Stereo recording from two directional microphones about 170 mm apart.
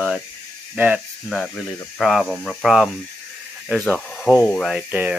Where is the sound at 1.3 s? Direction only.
5° left (ahead or behind).